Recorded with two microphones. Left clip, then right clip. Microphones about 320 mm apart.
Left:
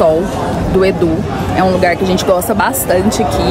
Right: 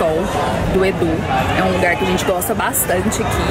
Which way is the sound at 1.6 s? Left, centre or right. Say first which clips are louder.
Left 9 dB; centre.